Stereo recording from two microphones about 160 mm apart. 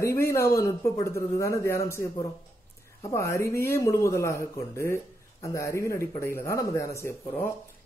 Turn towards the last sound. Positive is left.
turn(degrees=15)  # may be behind; listen again after turning